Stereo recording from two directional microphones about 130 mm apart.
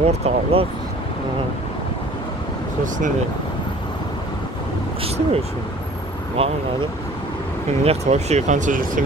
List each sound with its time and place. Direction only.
0.0 s speech: 50° right (ahead or behind)
5.0 s speech: 50° right (ahead or behind); by 9.0 s 85° right